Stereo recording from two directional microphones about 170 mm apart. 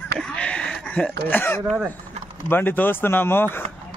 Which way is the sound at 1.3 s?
10° left (ahead or behind).